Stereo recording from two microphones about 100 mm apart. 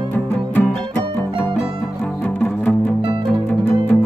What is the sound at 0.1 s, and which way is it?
Music, 20° left (ahead or behind).